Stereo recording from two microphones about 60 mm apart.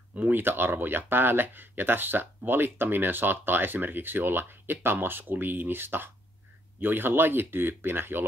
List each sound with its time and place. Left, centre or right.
0.1 s speech: right